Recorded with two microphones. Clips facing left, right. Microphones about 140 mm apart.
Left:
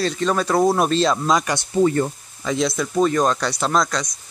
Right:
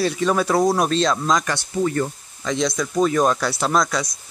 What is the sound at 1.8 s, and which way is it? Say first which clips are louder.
Speech: left 4 dB; 25° left (ahead or behind).